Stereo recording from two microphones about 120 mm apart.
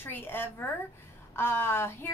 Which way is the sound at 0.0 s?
20° left (ahead or behind).